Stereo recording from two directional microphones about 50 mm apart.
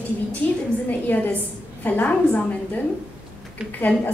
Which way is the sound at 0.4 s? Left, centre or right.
Left.